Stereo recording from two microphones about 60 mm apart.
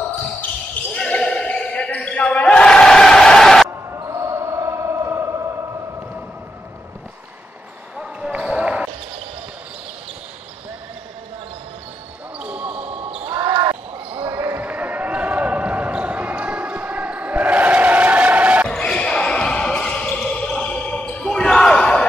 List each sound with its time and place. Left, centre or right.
0.9 s basketball bounce: centre
4.0 s basketball bounce: right
8.0 s basketball bounce: centre
12.4 s basketball bounce: right
14.5 s basketball bounce: right
18.7 s basketball bounce: centre